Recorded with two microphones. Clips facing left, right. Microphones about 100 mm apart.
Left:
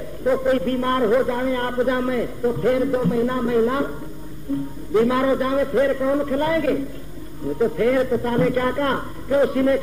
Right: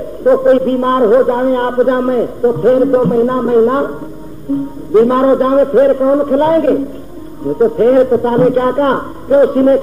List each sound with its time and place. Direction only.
0.2 s a man's voice: 40° right (ahead or behind)